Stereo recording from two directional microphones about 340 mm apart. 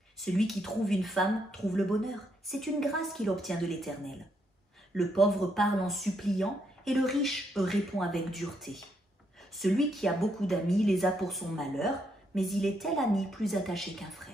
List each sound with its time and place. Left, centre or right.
0.2 s speech: centre
4.9 s speech: centre